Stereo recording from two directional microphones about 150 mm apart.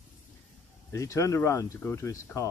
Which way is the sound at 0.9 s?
20° left (ahead or behind).